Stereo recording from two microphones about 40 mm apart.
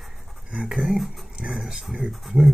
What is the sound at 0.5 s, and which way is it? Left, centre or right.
A man's voice, centre.